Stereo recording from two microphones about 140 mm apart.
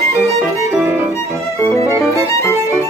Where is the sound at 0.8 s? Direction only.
15° right (ahead or behind).